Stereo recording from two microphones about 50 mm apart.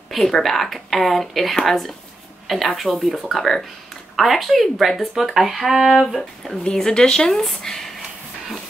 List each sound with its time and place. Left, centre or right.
0.1 s speech: centre
6.7 s speech: centre